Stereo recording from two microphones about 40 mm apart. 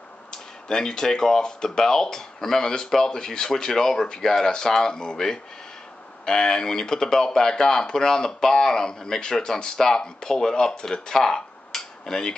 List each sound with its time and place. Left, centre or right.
0.3 s speech: centre